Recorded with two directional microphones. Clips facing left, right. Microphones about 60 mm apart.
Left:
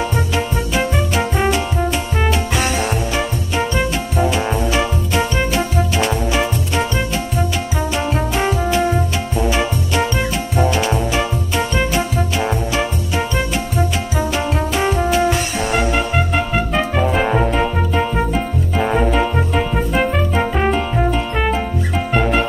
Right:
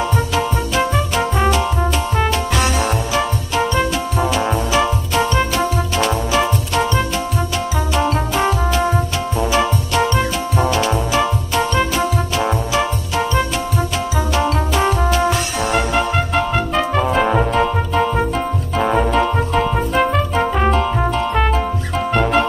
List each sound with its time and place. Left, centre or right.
0.4 s music: centre
3.5 s music: centre
14.8 s music: centre